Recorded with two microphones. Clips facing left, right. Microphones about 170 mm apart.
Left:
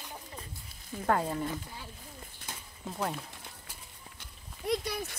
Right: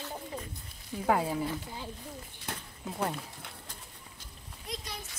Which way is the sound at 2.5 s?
60° right (ahead or behind).